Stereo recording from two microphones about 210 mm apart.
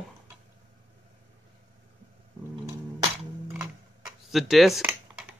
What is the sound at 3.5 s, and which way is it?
Typing, 5° right (ahead or behind).